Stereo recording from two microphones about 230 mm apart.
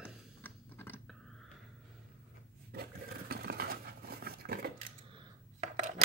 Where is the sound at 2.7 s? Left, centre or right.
Right.